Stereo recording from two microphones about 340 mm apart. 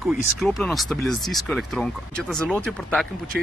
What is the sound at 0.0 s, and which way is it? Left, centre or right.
Speech, centre.